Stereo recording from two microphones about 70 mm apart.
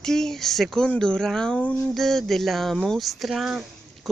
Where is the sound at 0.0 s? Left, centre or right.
Centre.